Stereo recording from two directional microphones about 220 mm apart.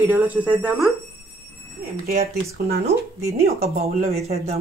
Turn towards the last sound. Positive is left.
turn(degrees=-30)  # may be behind; listen again after turning